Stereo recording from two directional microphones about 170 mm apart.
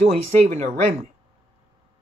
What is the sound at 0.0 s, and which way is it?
Speech, 40° right (ahead or behind).